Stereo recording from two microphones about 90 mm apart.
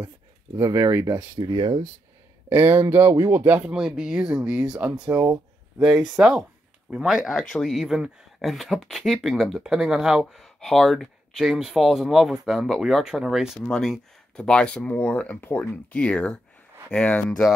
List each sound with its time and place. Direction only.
0.7 s speech: 30° right (ahead or behind)
1.4 s speech: 60° right (ahead or behind)
2.5 s speech: 25° right (ahead or behind); by 13.6 s 5° right (ahead or behind)
13.7 s speech: 5° left (ahead or behind)